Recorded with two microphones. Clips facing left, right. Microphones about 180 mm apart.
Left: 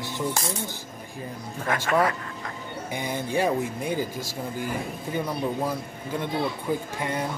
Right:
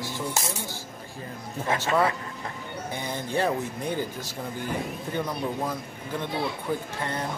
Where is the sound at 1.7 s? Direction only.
25° right (ahead or behind).